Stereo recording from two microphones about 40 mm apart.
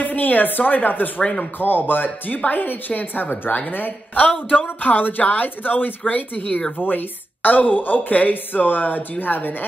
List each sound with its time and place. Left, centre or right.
0.0 s a woman's voice: left
1.2 s speech: centre
1.6 s a woman's voice: left
4.3 s speech: left
4.6 s a woman's voice: left
6.8 s a woman's voice: left